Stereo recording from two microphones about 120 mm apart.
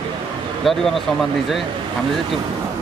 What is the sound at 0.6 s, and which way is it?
Speech, centre (ahead or behind).